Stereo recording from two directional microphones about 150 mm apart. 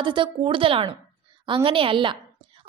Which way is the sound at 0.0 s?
30° right (ahead or behind).